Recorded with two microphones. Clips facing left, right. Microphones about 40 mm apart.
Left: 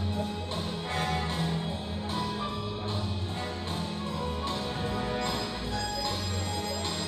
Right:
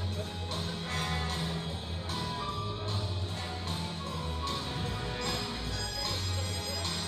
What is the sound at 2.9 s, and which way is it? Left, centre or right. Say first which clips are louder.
Music: left 3 dB; left.